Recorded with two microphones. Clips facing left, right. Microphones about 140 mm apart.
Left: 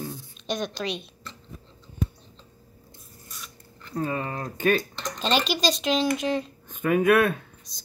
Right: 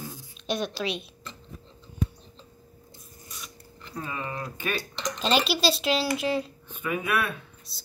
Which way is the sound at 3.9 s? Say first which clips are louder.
Left 5 dB; 40° left (ahead or behind).